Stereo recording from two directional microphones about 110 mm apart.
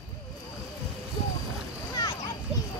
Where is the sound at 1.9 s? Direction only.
35° left (ahead or behind).